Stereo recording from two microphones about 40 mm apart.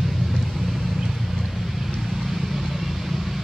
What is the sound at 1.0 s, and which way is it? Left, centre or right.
Vehicle, centre.